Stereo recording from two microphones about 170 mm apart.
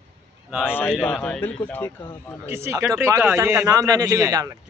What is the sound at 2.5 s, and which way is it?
A man's voice, 15° right (ahead or behind).